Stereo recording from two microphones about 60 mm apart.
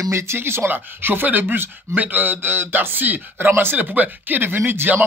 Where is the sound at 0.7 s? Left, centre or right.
Right.